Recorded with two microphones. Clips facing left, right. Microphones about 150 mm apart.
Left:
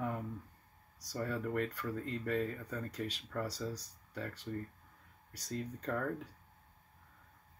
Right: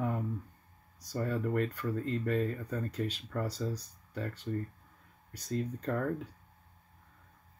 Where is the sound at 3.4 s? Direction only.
25° right (ahead or behind).